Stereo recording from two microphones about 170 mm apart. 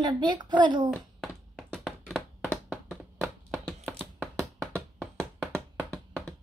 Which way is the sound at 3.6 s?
5° left (ahead or behind).